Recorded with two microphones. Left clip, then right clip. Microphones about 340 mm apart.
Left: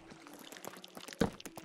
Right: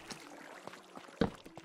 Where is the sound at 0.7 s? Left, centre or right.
Centre.